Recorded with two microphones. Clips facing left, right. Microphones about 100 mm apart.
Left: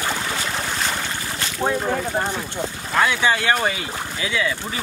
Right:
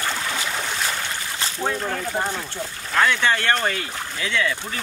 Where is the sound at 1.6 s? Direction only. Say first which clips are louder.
Left 4 dB; 20° left (ahead or behind).